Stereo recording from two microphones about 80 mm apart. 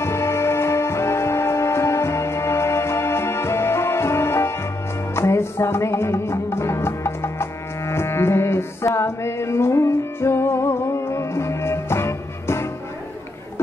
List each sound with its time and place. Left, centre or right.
0.0 s music: left